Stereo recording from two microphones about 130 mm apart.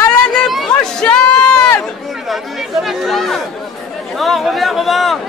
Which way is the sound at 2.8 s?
Centre (ahead or behind).